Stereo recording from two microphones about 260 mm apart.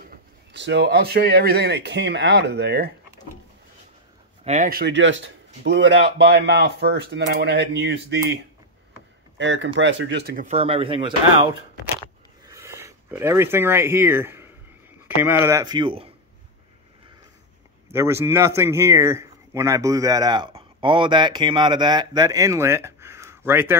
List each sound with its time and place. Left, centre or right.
0.5 s speech: right
4.5 s speech: right
9.4 s speech: right
10.5 s speech: right
12.4 s a sound: centre
15.4 s speech: centre
17.9 s speech: centre